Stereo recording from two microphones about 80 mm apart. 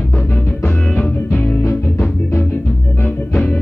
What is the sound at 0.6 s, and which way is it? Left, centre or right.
Music, centre.